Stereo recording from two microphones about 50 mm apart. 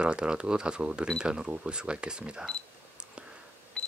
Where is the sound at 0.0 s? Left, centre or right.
Centre.